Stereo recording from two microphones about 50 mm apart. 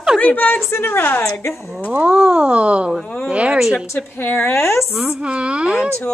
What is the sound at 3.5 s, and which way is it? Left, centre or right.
Speech, centre.